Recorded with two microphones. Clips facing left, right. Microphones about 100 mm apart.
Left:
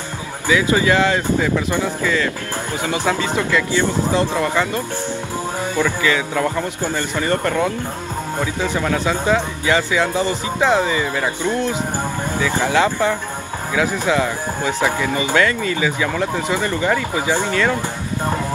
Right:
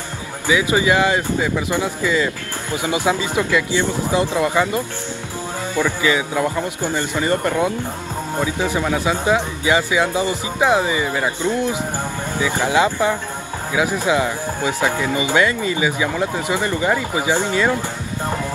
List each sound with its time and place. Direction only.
0.5 s speech: 15° right (ahead or behind)
12.4 s speech: 15° right (ahead or behind)